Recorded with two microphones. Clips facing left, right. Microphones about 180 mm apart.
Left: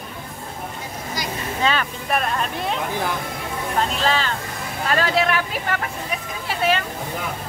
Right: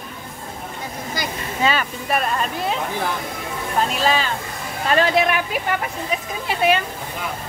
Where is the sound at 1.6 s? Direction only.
5° right (ahead or behind).